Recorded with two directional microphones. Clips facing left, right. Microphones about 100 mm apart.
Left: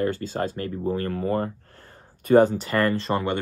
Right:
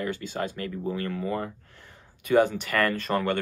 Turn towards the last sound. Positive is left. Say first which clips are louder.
# left 2 dB
turn(degrees=20)  # may be behind; listen again after turning